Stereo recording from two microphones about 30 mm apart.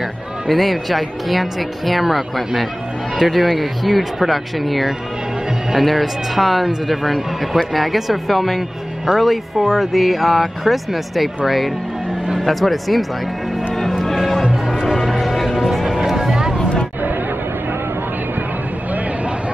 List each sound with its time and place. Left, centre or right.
0.5 s speech: centre
14.1 s music: centre